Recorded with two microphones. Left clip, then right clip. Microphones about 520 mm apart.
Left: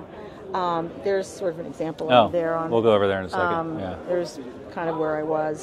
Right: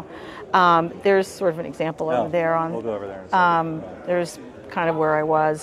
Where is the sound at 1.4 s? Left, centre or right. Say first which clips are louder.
Right 5 dB; right.